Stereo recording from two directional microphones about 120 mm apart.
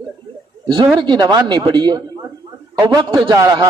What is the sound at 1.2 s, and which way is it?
A man's voice, 40° right (ahead or behind).